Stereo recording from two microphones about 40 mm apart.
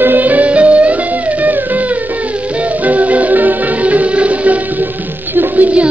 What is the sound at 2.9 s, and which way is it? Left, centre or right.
Music, right.